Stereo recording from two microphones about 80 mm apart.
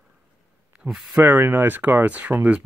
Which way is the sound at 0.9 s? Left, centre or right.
Centre.